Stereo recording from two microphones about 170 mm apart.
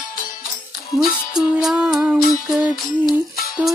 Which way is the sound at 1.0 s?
5° right (ahead or behind).